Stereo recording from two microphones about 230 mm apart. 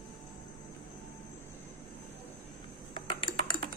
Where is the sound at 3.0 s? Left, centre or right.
Left.